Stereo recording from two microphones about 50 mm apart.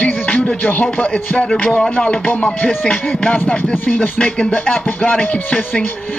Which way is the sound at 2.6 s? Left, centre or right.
Left.